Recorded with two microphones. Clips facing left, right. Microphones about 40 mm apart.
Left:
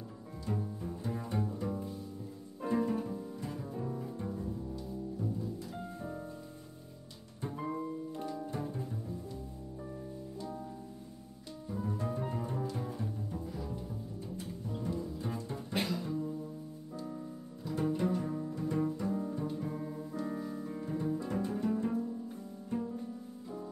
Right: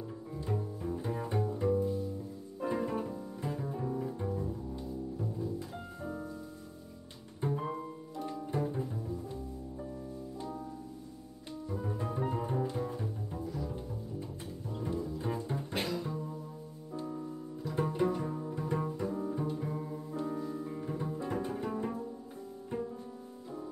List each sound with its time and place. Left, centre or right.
0.9 s double bass: centre
2.6 s bowed string instrument: centre
7.4 s music: centre
8.5 s double bass: centre
11.7 s music: centre
12.7 s double bass: centre
14.8 s double bass: centre
15.7 s music: centre
17.7 s music: centre
18.5 s double bass: centre
19.8 s music: centre
20.2 s piano: centre
20.8 s music: centre